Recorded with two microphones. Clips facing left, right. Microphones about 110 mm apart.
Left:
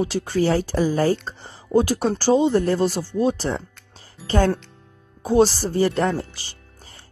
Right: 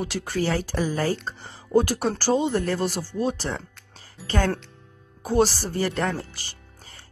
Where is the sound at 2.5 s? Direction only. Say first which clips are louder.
Left 5 dB; 35° left (ahead or behind).